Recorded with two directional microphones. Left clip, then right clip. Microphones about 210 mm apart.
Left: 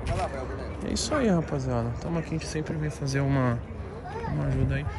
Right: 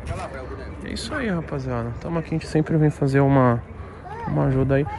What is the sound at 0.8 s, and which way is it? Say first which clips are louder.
Speech: left 1 dB; 20° left (ahead or behind).